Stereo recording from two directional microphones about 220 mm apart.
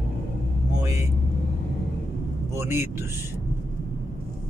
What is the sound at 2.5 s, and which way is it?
Speech, 10° right (ahead or behind).